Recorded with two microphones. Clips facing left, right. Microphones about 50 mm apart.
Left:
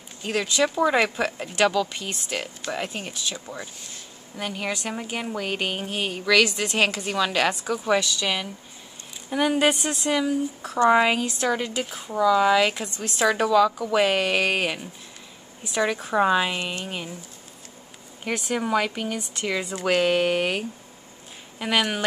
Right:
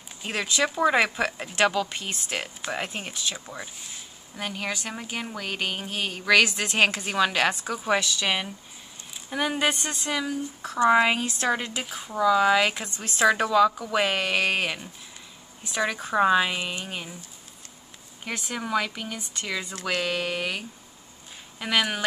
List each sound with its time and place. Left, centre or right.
0.2 s a woman's voice: centre
1.6 s speech: right
3.4 s speech: centre
6.2 s a woman's voice: centre
9.3 s speech: centre
11.1 s speech: centre
18.2 s speech: centre; by 20.6 s left
21.5 s speech: centre